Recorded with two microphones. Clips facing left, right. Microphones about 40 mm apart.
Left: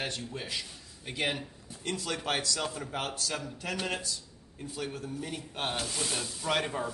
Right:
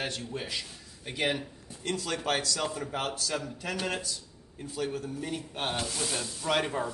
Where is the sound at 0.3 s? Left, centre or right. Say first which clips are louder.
Right 2 dB; centre.